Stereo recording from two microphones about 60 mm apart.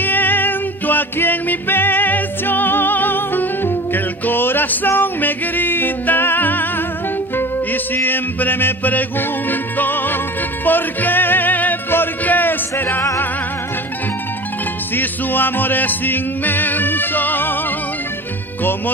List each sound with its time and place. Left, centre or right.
0.0 s music: left
15.0 s music: left